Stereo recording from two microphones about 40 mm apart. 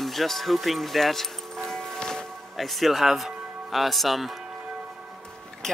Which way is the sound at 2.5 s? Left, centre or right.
Centre.